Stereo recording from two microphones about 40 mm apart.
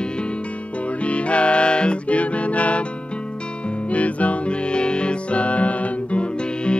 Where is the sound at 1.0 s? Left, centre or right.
Left.